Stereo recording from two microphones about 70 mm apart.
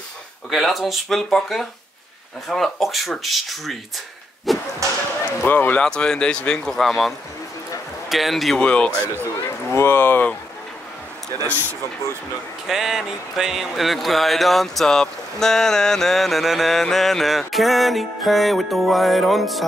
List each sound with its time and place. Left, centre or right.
0.5 s speech: centre
4.5 s whip: centre
5.4 s speech: left
5.8 s speech: centre
8.5 s speech: centre
9.0 s a sound: right
9.8 s speech: left
12.6 s speech: centre